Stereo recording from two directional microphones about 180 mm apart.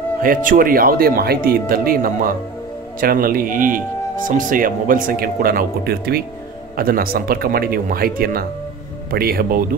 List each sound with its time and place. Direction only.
0.2 s speech: 50° right (ahead or behind)